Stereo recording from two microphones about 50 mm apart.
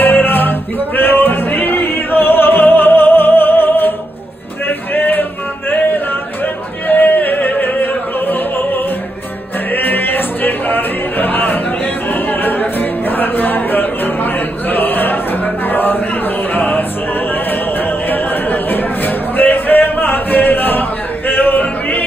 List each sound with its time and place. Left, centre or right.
0.0 s music: left
4.6 s a sound: left
6.9 s music: left
9.8 s music: left
12.1 s a capella: left
13.2 s chant: left
15.7 s a sound: left
16.5 s music: left
18.1 s a sound: left
21.3 s music: left